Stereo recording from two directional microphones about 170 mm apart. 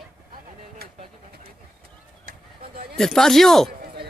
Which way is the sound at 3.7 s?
65° right (ahead or behind).